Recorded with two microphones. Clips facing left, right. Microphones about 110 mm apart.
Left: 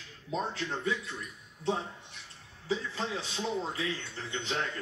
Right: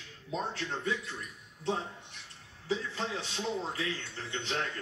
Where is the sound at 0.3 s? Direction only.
10° left (ahead or behind).